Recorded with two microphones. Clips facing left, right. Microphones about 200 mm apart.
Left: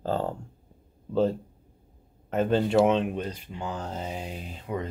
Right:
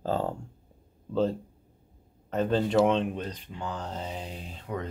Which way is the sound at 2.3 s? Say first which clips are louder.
Left 2 dB; 5° left (ahead or behind).